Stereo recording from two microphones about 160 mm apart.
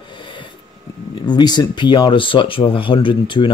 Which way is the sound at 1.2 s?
25° left (ahead or behind).